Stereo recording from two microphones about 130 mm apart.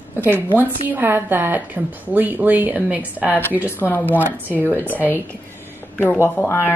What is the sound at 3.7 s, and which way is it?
Frying, 15° left (ahead or behind).